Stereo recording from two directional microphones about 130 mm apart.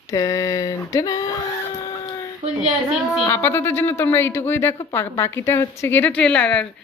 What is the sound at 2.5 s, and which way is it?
Speech, 5° right (ahead or behind).